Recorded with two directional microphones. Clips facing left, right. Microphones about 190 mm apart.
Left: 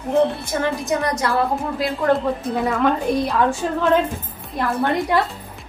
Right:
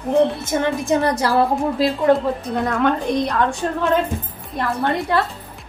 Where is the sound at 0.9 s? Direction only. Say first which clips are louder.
Right 5 dB; 30° right (ahead or behind).